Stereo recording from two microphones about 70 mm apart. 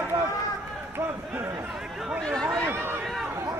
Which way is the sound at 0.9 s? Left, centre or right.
Right.